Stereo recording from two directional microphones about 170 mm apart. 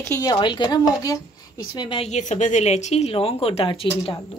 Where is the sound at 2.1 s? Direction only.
45° left (ahead or behind).